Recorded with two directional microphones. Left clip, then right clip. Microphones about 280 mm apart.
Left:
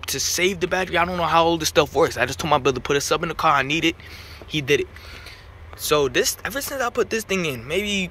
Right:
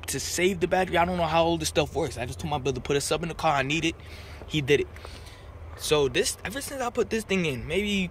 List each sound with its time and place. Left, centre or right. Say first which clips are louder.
0.0 s speech: left 5 dB; centre